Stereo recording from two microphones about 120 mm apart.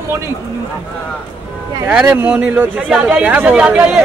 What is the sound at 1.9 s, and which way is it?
Speech, 15° right (ahead or behind).